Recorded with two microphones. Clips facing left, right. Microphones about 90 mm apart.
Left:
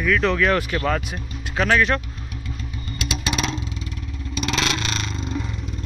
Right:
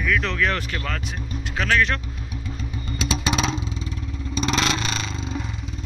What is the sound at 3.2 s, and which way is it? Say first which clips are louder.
Vehicle: even; 20° right (ahead or behind).